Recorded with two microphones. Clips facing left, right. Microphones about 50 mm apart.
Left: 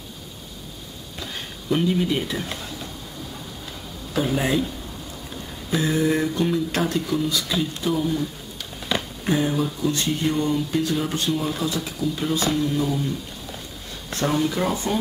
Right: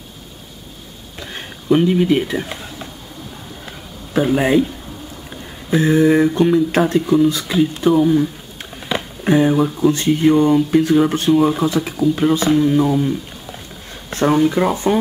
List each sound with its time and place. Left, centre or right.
1.2 s speech: right
4.1 s speech: right
14.1 s speech: right